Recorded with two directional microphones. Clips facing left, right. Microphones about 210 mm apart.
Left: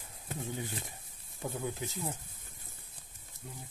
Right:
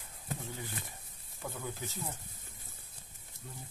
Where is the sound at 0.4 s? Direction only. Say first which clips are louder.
Left 4 dB; 20° left (ahead or behind).